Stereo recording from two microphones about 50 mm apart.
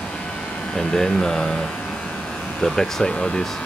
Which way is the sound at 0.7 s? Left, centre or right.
Centre.